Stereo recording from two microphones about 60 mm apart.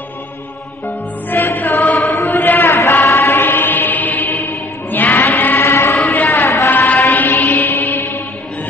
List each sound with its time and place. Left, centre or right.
0.8 s music: left
2.0 s chant: left
2.3 s a sound: left
2.8 s chant: left
3.4 s music: left
6.2 s a sound: left
7.2 s mantra: left